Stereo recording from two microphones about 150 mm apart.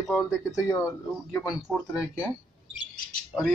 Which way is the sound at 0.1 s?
20° left (ahead or behind).